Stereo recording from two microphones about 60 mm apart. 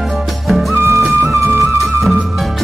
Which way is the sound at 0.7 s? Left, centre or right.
Right.